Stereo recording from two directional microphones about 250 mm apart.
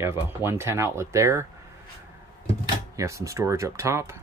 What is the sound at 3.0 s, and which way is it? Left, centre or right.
Speech, centre.